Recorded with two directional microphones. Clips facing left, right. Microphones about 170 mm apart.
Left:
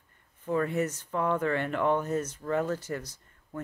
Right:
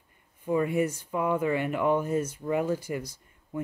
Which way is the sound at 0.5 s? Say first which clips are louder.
Right 2 dB; 10° right (ahead or behind).